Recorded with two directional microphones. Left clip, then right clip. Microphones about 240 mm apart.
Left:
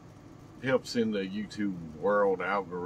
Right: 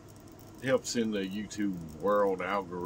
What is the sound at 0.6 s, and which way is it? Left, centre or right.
Speech, centre.